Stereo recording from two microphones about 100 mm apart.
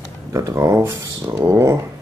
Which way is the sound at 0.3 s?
35° right (ahead or behind).